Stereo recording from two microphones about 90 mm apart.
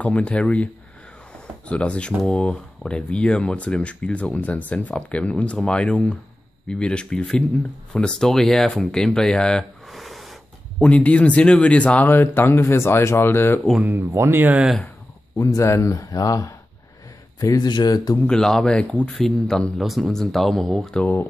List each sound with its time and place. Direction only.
0.0 s speech: 15° left (ahead or behind)
1.7 s speech: 15° left (ahead or behind)
10.8 s speech: 15° left (ahead or behind)
13.8 s speech: 25° right (ahead or behind)
15.3 s speech: 30° left (ahead or behind)
17.6 s speech: 50° left (ahead or behind)
18.2 s speech: 5° left (ahead or behind)
21.0 s speech: 25° left (ahead or behind)